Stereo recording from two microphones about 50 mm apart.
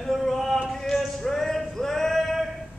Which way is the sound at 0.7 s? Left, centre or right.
Centre.